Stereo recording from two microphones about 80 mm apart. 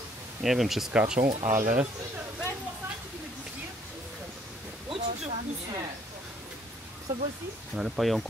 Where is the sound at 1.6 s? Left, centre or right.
Right.